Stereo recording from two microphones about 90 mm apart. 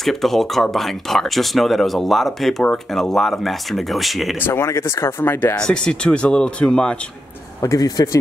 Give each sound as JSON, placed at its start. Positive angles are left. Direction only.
{"t": 0.0, "sound": "speech", "side_deg": 5}
{"t": 4.4, "sound": "speech", "side_deg": 25}
{"t": 5.6, "sound": "speech", "side_deg": 10}
{"t": 7.6, "sound": "speech", "side_deg": 40}